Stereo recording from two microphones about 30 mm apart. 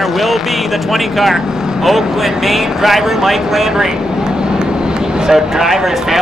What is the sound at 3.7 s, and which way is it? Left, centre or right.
Speech, right.